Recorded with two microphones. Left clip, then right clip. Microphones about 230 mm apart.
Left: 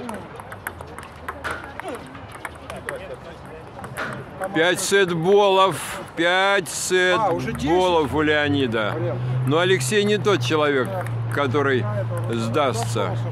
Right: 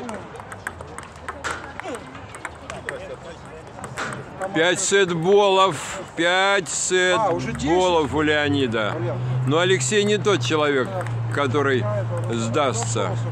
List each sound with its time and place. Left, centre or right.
2.4 s run: centre
3.9 s a sound: right
4.6 s speech: centre
7.3 s speech: centre
7.7 s speech: centre